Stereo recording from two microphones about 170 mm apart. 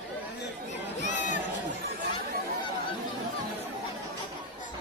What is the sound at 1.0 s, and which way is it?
Chatter, 45° left (ahead or behind).